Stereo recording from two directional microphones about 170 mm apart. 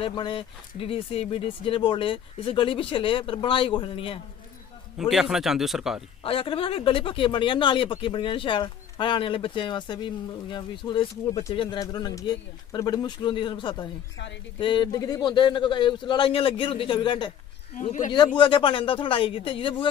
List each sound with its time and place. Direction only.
0.0 s speech: 30° left (ahead or behind)
4.9 s speech: centre (ahead or behind)
6.2 s speech: 30° left (ahead or behind)
17.8 s speech: 45° left (ahead or behind)
18.1 s speech: 25° left (ahead or behind)